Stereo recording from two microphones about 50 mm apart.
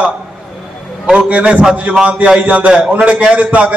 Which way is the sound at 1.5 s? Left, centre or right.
Centre.